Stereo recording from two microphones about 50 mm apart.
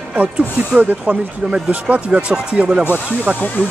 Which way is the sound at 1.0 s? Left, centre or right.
Right.